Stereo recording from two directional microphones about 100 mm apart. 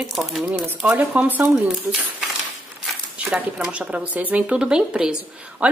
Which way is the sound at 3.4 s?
10° right (ahead or behind).